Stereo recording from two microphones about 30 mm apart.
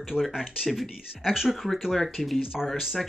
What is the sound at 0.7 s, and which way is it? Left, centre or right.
Speech, centre.